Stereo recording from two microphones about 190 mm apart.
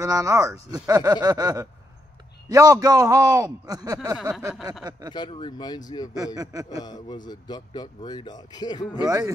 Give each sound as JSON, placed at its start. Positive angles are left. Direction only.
{"t": 0.0, "sound": "a man's voice", "side_deg": -15}
{"t": 5.1, "sound": "speech", "side_deg": 25}
{"t": 6.1, "sound": "a man's voice", "side_deg": -20}
{"t": 6.8, "sound": "speech", "side_deg": 20}
{"t": 9.0, "sound": "speech", "side_deg": -15}